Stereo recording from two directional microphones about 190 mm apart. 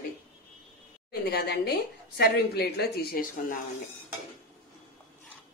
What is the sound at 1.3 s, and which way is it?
A woman's voice, 55° left (ahead or behind).